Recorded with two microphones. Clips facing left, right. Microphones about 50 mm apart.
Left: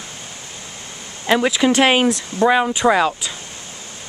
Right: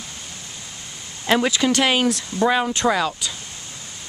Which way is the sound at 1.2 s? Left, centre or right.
Centre.